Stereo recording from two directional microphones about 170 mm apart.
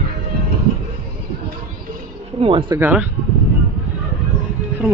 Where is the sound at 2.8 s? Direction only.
10° right (ahead or behind).